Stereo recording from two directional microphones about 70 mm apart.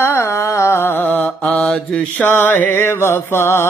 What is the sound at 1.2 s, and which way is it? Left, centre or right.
Mantra, centre.